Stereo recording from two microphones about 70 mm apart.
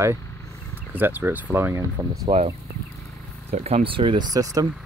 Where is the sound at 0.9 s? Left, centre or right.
Right.